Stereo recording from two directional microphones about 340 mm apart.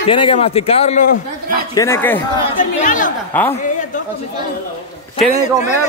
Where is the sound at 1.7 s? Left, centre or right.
Centre.